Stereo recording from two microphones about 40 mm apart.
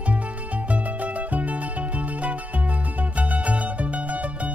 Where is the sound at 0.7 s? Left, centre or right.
Right.